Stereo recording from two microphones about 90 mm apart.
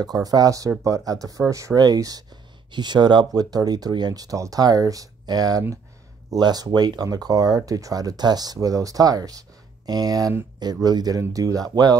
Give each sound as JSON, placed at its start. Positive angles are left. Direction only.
{"t": 0.0, "sound": "speech", "side_deg": -45}
{"t": 2.7, "sound": "speech", "side_deg": -55}